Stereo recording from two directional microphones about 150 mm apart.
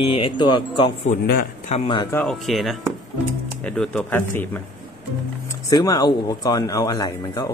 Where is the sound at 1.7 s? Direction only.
45° left (ahead or behind).